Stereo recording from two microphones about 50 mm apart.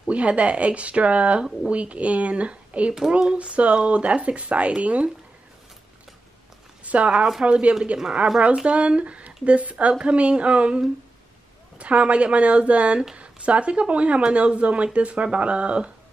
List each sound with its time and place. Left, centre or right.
0.1 s speech: right
6.8 s speech: right
11.8 s speech: right